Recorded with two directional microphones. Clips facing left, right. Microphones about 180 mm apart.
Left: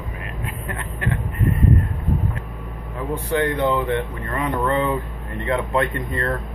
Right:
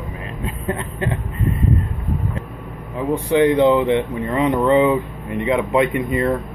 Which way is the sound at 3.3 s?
15° right (ahead or behind).